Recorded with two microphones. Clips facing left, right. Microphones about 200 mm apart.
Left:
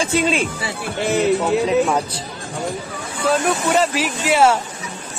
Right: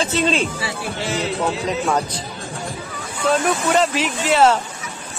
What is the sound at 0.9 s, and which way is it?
Speech, 55° left (ahead or behind).